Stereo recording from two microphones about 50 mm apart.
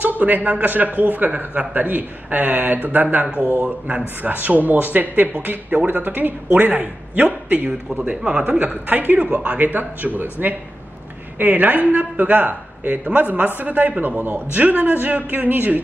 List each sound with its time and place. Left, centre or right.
0.0 s a man's voice: right
8.2 s a man's voice: centre
8.6 s a man's voice: right